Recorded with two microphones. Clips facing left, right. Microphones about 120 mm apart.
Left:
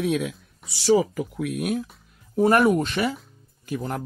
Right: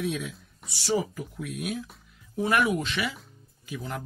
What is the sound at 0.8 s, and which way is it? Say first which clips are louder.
A man's voice: left 8 dB; 90° left.